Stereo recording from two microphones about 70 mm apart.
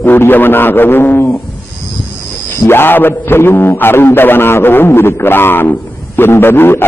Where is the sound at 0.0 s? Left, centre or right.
Left.